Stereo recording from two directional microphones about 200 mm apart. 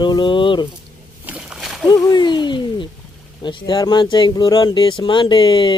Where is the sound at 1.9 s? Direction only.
20° left (ahead or behind).